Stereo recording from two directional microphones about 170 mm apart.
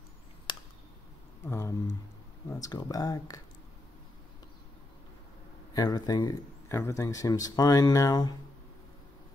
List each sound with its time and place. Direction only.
0.5 s a sound: 25° left (ahead or behind)
1.5 s speech: 15° left (ahead or behind)
5.7 s speech: 20° left (ahead or behind)